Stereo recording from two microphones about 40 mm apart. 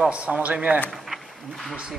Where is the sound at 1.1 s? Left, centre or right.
Centre.